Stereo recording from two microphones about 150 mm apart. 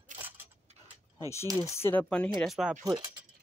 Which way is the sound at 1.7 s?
15° left (ahead or behind).